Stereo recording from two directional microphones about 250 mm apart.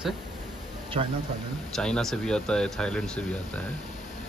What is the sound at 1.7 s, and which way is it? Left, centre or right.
Speech, centre.